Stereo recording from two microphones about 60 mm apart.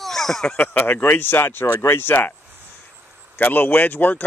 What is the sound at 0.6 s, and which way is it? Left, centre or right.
Speech, left.